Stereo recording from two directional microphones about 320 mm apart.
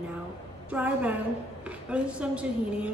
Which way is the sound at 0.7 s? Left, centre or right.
Centre.